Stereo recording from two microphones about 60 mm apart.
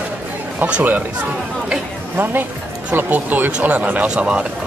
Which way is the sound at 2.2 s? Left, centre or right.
Right.